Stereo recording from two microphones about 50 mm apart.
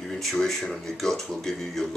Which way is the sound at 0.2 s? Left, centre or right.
Centre.